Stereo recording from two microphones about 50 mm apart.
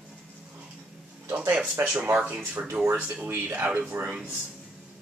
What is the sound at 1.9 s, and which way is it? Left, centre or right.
Speech, right.